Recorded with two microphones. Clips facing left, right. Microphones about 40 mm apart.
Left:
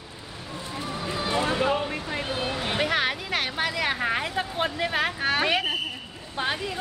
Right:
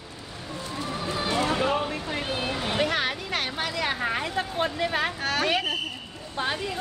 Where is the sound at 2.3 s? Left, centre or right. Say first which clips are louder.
Even; centre.